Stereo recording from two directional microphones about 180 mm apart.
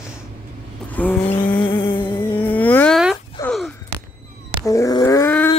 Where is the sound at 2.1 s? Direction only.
10° left (ahead or behind).